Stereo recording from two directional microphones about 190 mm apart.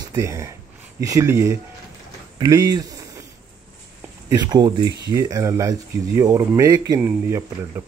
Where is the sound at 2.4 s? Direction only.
20° right (ahead or behind).